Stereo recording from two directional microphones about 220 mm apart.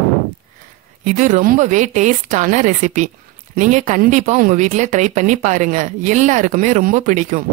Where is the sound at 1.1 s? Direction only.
35° right (ahead or behind).